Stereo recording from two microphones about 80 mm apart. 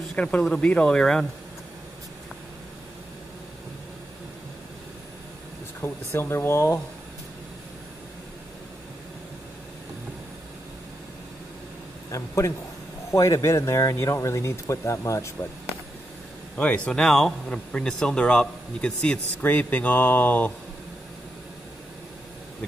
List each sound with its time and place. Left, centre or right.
0.2 s speech: centre
5.8 s speech: left
12.1 s speech: left
16.5 s speech: centre
19.4 s speech: left